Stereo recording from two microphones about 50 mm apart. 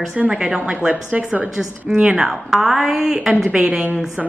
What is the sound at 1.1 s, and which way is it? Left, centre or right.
A woman's voice, right.